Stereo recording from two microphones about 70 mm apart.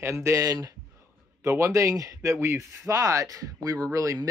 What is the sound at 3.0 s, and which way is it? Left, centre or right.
Speech, right.